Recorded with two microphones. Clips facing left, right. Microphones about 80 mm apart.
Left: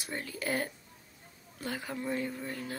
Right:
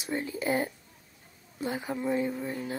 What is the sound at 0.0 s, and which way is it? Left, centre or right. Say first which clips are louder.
Speech: right 6 dB; centre.